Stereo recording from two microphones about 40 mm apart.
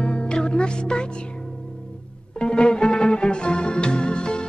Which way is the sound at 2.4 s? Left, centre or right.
Left.